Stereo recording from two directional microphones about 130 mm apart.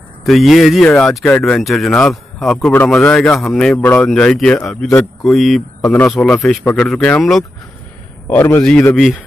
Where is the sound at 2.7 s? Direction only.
15° left (ahead or behind).